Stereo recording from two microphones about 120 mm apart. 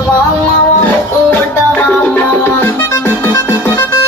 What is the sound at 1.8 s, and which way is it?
Music, 15° left (ahead or behind).